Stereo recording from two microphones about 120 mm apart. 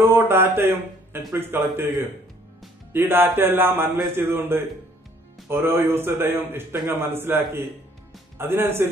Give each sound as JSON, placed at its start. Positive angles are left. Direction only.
{"t": 0.1, "sound": "a man's voice", "side_deg": -20}
{"t": 2.9, "sound": "a man's voice", "side_deg": -20}